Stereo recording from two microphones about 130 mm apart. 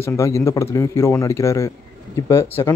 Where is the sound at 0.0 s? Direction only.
20° left (ahead or behind).